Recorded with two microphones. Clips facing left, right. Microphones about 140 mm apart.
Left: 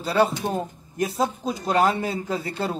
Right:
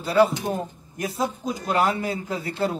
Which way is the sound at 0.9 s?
30° left (ahead or behind).